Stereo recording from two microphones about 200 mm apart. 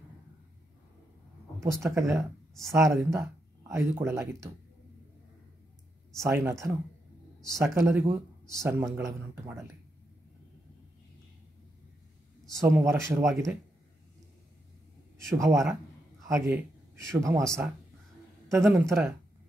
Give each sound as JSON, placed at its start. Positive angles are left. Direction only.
{"t": 1.6, "sound": "speech", "side_deg": -15}
{"t": 2.1, "sound": "speech", "side_deg": 0}
{"t": 2.7, "sound": "speech", "side_deg": -15}
{"t": 6.1, "sound": "speech", "side_deg": -15}
{"t": 12.6, "sound": "speech", "side_deg": -15}
{"t": 13.3, "sound": "speech", "side_deg": 0}
{"t": 15.1, "sound": "a man's voice", "side_deg": -15}